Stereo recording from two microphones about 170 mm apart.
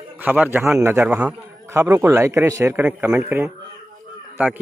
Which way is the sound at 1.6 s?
15° right (ahead or behind).